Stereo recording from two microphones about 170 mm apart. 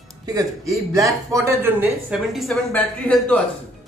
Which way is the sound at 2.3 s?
Centre (ahead or behind).